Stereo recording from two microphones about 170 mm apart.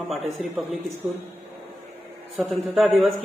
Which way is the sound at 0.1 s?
Centre (ahead or behind).